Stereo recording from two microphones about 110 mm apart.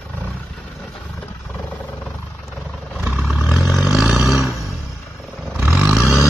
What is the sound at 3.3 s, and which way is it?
Vehicle, 5° right (ahead or behind).